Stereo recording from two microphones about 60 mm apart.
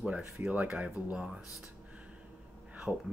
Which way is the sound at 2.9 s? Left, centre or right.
Centre.